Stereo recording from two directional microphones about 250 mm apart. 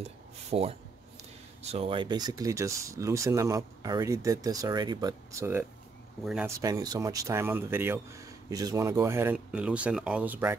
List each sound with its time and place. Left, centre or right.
0.0 s speech: right; by 6.5 s centre
6.6 s speech: centre